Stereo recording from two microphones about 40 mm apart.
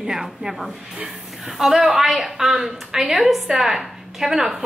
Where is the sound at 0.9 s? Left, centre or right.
Centre.